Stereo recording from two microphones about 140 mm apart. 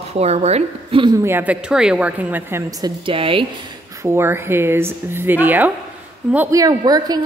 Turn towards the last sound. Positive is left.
turn(degrees=-30)  # may be behind; listen again after turning